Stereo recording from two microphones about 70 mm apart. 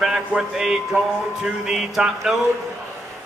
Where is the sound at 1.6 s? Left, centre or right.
Centre.